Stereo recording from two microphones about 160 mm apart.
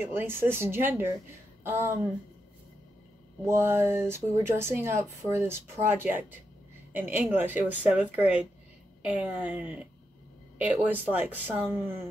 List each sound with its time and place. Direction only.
0.0 s speech: 15° right (ahead or behind)
3.4 s a woman's voice: 15° right (ahead or behind)